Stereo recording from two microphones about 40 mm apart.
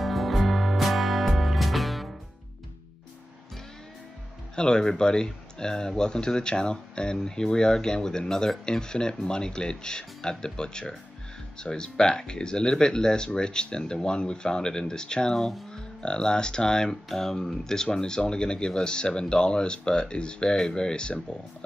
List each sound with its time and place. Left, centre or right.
0.0 s music: centre
4.6 s speech: left
15.3 s speech: centre
15.7 s speech: left
16.9 s speech: centre